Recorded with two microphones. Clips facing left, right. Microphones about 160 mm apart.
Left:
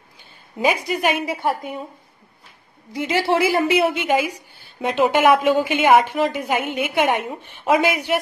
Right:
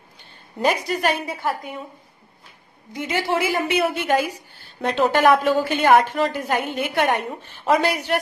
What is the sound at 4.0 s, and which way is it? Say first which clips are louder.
A woman's voice: left 1 dB; 15° left (ahead or behind).